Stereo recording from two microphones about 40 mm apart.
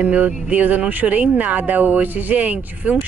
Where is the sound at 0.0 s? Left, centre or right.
Right.